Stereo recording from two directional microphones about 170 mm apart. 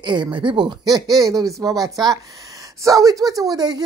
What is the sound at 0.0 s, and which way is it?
Speech, 25° right (ahead or behind).